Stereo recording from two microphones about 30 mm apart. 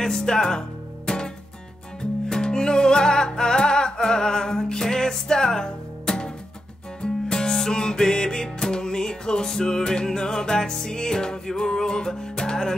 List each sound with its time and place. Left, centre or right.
0.2 s music: centre